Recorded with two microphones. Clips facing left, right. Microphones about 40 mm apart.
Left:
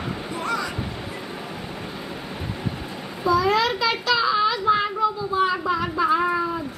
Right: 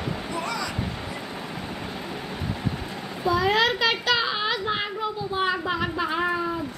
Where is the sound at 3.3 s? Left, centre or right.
Right.